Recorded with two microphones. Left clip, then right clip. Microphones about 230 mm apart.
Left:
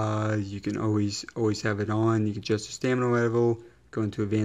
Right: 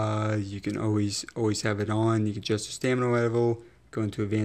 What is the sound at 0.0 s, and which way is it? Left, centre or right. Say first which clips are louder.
Speech: even; centre.